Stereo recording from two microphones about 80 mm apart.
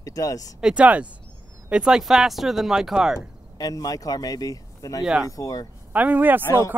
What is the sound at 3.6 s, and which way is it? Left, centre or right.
Speech, left.